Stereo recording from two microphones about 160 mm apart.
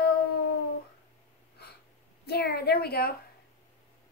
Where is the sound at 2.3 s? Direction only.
80° left.